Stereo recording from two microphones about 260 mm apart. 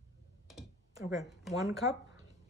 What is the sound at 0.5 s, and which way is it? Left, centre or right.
Computer keyboard, centre.